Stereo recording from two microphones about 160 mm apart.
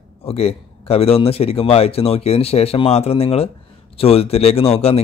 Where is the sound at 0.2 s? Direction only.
40° left (ahead or behind).